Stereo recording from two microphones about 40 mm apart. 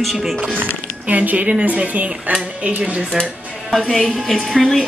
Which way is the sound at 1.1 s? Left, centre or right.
Right.